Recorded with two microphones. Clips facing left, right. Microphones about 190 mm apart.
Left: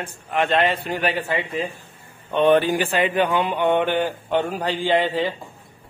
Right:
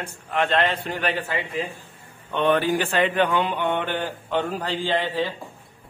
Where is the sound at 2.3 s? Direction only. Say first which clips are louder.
Left 4 dB; 20° left (ahead or behind).